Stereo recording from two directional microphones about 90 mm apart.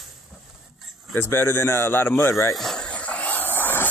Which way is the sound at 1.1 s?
25° left (ahead or behind).